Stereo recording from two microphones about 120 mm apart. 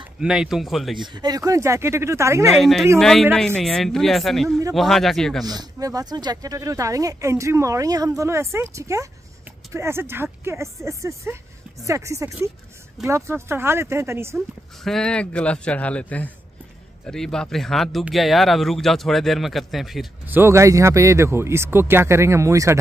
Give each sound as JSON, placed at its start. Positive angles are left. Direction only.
{"t": 0.2, "sound": "speech", "side_deg": -5}
{"t": 1.0, "sound": "speech", "side_deg": -35}
{"t": 2.5, "sound": "speech", "side_deg": 0}
{"t": 5.4, "sound": "speech", "side_deg": -35}
{"t": 14.8, "sound": "a man's voice", "side_deg": 5}
{"t": 20.2, "sound": "speech", "side_deg": -20}